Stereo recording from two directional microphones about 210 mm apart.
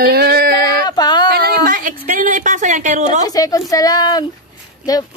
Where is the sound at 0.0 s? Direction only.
45° right (ahead or behind).